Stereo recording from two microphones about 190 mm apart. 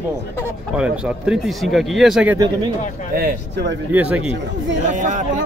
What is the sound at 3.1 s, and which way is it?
Speech, 50° right (ahead or behind).